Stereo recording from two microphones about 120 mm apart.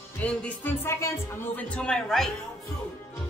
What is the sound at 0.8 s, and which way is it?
Speech, 20° left (ahead or behind).